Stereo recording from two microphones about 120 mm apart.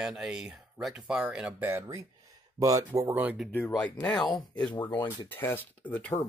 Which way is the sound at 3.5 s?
15° left (ahead or behind).